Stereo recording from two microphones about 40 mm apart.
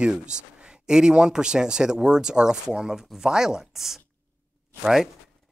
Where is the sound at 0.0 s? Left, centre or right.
Right.